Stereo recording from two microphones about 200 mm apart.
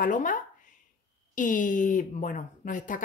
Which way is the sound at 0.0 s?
40° left (ahead or behind).